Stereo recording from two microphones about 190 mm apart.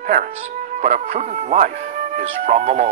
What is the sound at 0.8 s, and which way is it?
Speech, 40° right (ahead or behind).